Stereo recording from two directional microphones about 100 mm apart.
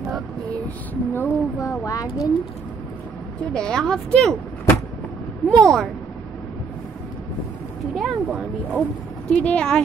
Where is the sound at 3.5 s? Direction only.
5° left (ahead or behind).